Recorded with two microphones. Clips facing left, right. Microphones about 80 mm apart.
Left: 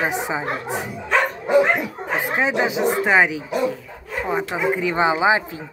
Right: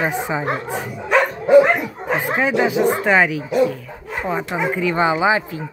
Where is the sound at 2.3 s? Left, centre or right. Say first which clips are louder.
Right 3 dB; centre.